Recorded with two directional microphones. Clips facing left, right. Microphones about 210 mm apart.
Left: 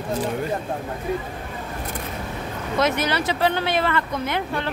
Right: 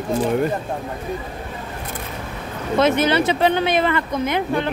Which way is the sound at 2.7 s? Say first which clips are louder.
Right 5 dB; 25° right (ahead or behind).